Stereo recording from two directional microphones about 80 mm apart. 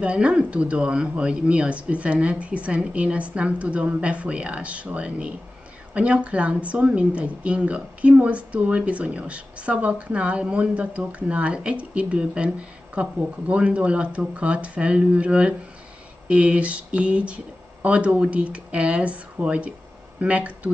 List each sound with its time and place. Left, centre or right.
0.0 s speech: centre